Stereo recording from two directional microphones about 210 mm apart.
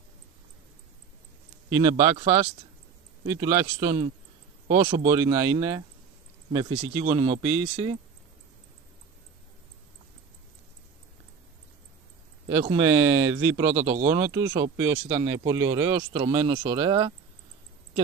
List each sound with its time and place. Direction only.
1.8 s speech: 20° right (ahead or behind)
12.4 s speech: 25° right (ahead or behind)
13.7 s speech: 30° right (ahead or behind)
14.2 s speech: 15° right (ahead or behind)